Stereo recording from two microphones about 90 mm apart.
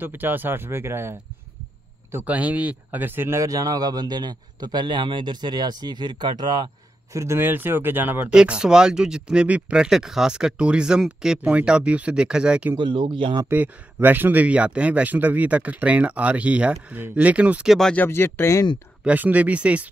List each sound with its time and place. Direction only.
0.0 s speech: 20° right (ahead or behind)
2.2 s speech: 15° right (ahead or behind)
3.4 s a man's voice: 40° right (ahead or behind); by 6.7 s 55° right (ahead or behind)
7.1 s speech: 30° right (ahead or behind)
8.3 s speech: 10° right (ahead or behind)
12.7 s speech: 65° right (ahead or behind)
14.0 s speech: 20° right (ahead or behind)
17.6 s speech: 5° left (ahead or behind)
17.9 s speech: 25° left (ahead or behind)
19.0 s speech: 15° right (ahead or behind)